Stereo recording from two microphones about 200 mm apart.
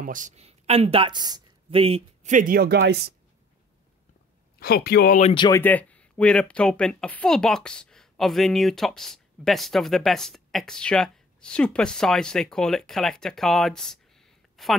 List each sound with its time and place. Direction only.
0.0 s speech: 40° right (ahead or behind)
4.6 s speech: 50° left (ahead or behind)
5.3 s speech: 25° left (ahead or behind)
5.6 s speech: 10° left (ahead or behind)